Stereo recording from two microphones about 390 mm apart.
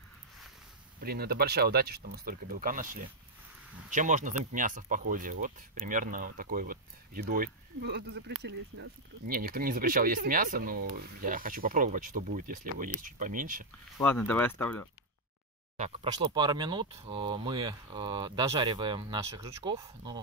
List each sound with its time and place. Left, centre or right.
1.0 s speech: right
13.9 s speech: centre
15.8 s speech: centre